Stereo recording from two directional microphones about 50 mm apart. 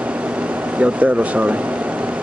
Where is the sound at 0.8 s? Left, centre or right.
Right.